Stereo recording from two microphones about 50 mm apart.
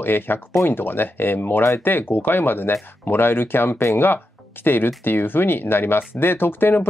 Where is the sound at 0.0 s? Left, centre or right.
Left.